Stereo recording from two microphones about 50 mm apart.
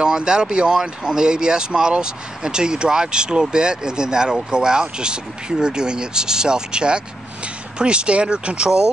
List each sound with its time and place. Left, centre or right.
0.0 s speech: centre